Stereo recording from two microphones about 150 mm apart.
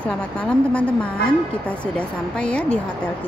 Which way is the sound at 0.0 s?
10° left (ahead or behind).